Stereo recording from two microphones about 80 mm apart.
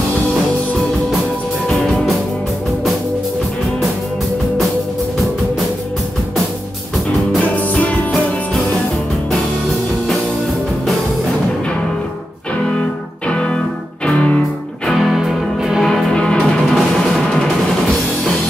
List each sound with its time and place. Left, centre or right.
1.7 s music: centre
7.7 s music: centre
14.0 s music: centre
14.9 s music: centre
15.9 s music: centre